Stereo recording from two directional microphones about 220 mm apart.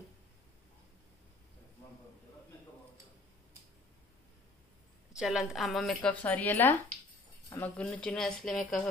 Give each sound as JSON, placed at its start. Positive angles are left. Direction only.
{"t": 5.1, "sound": "a woman's voice", "side_deg": 0}
{"t": 7.7, "sound": "a woman's voice", "side_deg": 5}